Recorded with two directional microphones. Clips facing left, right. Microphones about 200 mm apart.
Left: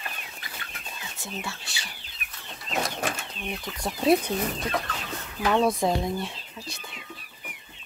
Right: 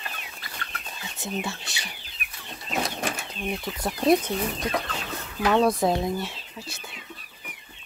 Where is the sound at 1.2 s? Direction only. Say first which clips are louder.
Right 6 dB; 20° right (ahead or behind).